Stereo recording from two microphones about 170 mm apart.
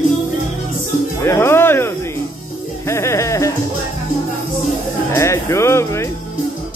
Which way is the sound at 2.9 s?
15° left (ahead or behind).